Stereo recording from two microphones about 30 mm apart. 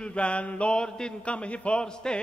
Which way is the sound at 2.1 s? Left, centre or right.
Left.